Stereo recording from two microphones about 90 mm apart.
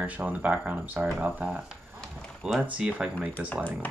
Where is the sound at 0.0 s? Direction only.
15° right (ahead or behind).